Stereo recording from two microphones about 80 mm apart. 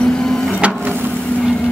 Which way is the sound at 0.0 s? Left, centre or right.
Centre.